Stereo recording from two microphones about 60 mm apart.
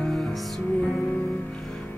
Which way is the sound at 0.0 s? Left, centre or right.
Centre.